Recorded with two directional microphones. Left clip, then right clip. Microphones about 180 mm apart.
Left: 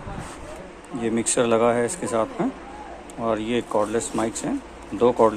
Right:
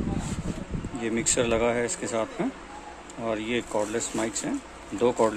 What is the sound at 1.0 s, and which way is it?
Speech, 15° right (ahead or behind).